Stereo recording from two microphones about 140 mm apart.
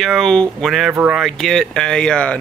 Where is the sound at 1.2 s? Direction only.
5° left (ahead or behind).